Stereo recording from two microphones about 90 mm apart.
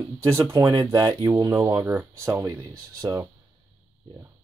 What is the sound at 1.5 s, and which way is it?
Speech, 25° right (ahead or behind).